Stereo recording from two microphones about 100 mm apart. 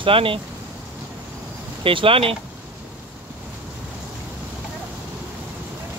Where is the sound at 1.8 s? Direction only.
65° right (ahead or behind).